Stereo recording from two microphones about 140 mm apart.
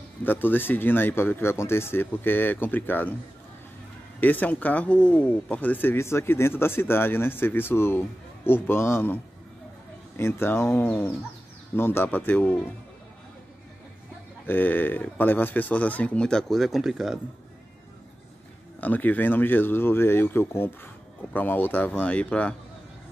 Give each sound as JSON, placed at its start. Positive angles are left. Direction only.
{"t": 0.2, "sound": "speech", "side_deg": 15}
{"t": 4.2, "sound": "speech", "side_deg": 10}
{"t": 14.4, "sound": "speech", "side_deg": 15}
{"t": 18.8, "sound": "speech", "side_deg": 10}